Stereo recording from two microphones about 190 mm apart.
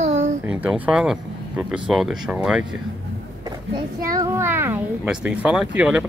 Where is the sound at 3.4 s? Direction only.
20° right (ahead or behind).